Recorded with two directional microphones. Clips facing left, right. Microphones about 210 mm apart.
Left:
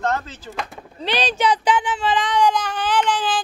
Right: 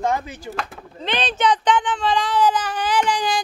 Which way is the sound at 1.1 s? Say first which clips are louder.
Even; 10° left (ahead or behind).